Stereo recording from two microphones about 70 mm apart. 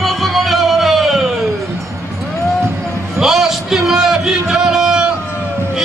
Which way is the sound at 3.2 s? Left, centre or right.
Centre.